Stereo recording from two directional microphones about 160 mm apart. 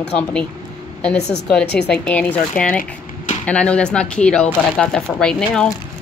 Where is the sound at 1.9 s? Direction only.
10° left (ahead or behind).